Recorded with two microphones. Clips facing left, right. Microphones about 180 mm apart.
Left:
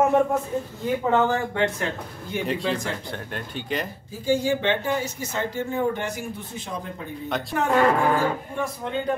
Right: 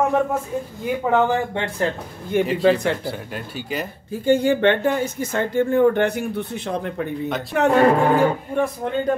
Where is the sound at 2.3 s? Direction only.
55° right (ahead or behind).